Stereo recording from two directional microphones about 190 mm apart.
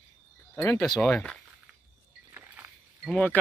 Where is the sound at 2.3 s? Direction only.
10° right (ahead or behind).